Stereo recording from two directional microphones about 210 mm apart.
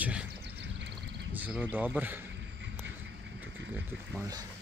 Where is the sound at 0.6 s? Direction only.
55° right (ahead or behind).